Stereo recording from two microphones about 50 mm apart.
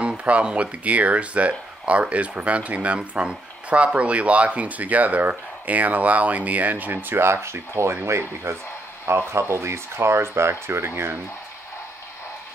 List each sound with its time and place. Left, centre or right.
0.2 s speech: right
7.2 s speech: right